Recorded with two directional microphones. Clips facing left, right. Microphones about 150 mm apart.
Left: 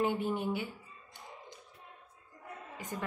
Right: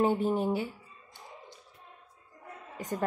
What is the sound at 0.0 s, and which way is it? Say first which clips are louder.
Speech: right 5 dB; 40° right (ahead or behind).